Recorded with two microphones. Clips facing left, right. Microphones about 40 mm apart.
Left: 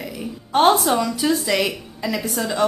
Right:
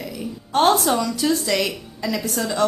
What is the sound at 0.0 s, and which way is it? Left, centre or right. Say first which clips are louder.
A woman's voice: even; centre.